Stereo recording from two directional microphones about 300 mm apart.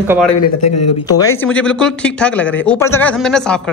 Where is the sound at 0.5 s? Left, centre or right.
Left.